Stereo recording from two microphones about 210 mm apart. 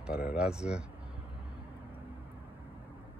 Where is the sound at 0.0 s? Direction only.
5° right (ahead or behind).